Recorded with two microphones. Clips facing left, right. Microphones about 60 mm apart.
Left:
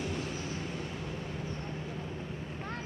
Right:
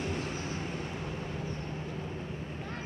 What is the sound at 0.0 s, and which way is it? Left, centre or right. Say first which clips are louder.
Vehicle: right 1 dB; right.